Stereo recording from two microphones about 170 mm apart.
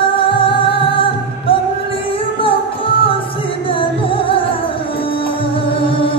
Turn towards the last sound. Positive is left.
turn(degrees=30)  # may be behind; listen again after turning